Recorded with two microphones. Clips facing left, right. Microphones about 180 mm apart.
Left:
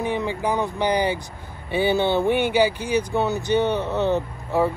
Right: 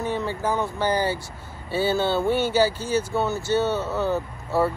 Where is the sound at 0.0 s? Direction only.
15° left (ahead or behind).